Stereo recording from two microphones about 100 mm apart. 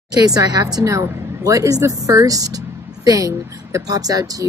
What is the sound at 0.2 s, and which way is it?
Speech, 40° right (ahead or behind).